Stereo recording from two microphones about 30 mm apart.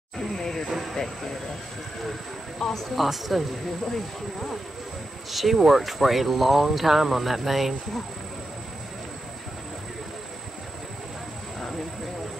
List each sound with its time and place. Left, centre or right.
0.4 s a sound: centre
2.6 s speech: centre
3.0 s speech: centre
3.9 s speech: centre
5.3 s speech: centre